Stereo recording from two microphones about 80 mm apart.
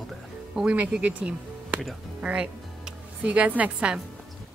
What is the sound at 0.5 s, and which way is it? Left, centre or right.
A woman's voice, centre.